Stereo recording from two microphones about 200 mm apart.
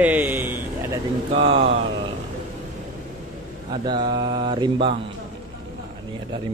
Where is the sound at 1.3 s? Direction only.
30° right (ahead or behind).